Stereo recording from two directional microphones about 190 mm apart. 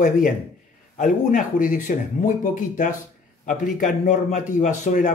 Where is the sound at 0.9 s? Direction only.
45° left (ahead or behind).